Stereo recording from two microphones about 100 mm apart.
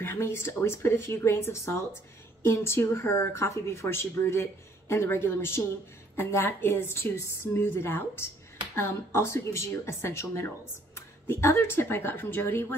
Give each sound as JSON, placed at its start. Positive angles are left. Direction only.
{"t": 0.0, "sound": "speech", "side_deg": 25}